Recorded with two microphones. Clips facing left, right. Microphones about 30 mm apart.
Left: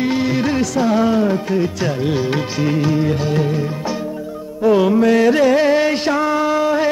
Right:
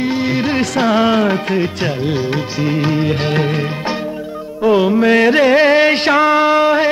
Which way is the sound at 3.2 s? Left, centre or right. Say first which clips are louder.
Right 2 dB; right.